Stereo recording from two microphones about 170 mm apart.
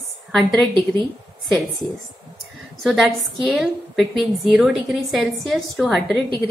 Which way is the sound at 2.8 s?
Centre (ahead or behind).